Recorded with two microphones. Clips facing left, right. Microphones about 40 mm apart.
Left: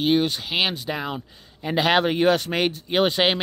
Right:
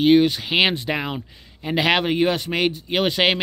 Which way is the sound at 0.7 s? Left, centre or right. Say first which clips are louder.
Right 4 dB; right.